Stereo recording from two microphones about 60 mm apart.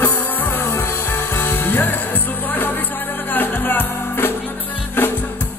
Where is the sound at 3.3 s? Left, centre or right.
Left.